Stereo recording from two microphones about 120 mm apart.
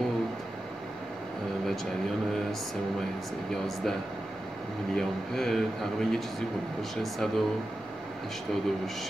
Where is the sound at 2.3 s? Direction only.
Centre (ahead or behind).